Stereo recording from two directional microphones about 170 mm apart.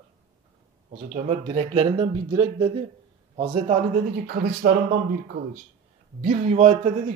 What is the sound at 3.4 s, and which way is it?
Speech, 40° right (ahead or behind).